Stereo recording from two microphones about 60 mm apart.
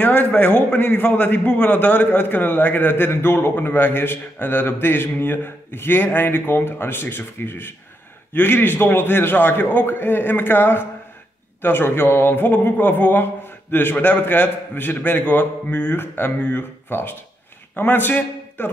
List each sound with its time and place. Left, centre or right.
0.0 s a man's voice: left